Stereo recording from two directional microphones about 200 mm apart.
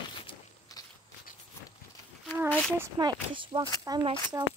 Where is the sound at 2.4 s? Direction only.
10° left (ahead or behind).